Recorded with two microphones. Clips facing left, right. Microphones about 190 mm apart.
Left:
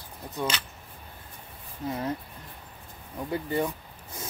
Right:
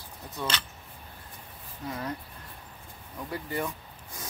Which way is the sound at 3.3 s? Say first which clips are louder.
Left 5 dB; 25° left (ahead or behind).